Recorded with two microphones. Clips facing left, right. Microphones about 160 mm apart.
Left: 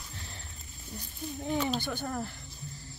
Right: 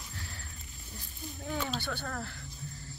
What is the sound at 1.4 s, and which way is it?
Snake, 20° left (ahead or behind).